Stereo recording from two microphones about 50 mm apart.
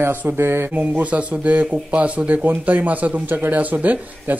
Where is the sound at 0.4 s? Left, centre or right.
Right.